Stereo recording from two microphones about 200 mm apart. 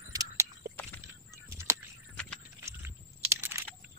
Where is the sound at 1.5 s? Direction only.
15° right (ahead or behind).